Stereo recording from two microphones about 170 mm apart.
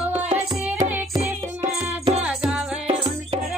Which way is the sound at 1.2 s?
40° right (ahead or behind).